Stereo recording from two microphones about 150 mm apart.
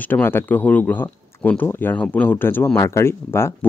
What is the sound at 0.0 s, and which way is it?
Speech, 15° left (ahead or behind).